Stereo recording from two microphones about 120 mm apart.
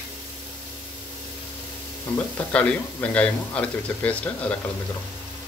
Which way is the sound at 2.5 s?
10° left (ahead or behind).